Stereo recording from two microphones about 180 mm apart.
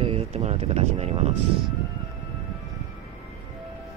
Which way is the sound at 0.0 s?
35° right (ahead or behind).